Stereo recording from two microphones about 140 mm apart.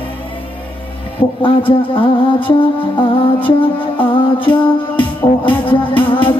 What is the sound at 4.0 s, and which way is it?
Music, 35° left (ahead or behind).